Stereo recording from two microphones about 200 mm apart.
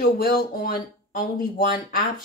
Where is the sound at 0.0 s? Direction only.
50° left (ahead or behind).